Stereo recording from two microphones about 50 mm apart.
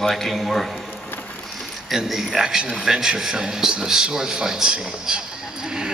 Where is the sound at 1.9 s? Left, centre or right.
Centre.